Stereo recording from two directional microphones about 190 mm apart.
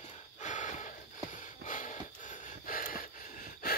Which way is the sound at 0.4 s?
40° left (ahead or behind).